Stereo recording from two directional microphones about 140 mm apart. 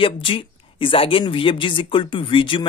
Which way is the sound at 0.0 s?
40° left (ahead or behind).